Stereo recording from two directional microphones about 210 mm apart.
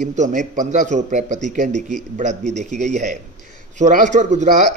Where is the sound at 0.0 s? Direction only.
35° right (ahead or behind).